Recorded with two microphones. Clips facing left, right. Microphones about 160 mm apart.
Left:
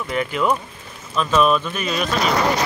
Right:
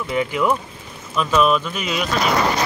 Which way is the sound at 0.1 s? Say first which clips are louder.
Right 1 dB; 15° right (ahead or behind).